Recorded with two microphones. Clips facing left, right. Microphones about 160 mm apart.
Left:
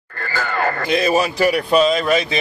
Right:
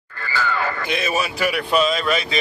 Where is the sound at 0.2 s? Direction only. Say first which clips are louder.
Left 2 dB; 50° left (ahead or behind).